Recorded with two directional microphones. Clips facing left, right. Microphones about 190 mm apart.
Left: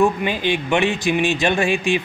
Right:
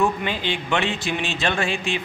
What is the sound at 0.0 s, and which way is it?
Speech, 15° left (ahead or behind).